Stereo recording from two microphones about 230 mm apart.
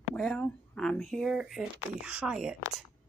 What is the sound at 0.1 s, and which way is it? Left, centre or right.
Speech, centre.